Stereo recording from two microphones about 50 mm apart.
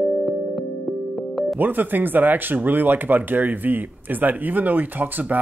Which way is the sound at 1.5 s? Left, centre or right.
Right.